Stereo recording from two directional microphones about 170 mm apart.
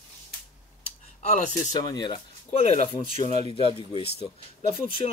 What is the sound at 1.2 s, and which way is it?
Speech, 45° left (ahead or behind).